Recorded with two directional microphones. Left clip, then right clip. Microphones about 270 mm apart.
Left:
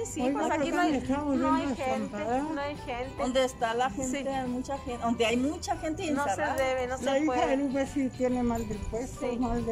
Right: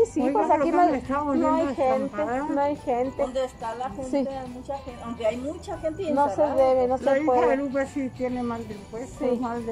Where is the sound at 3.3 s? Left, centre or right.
Left.